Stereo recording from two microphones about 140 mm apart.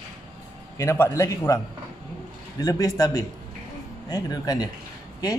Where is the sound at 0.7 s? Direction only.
15° left (ahead or behind).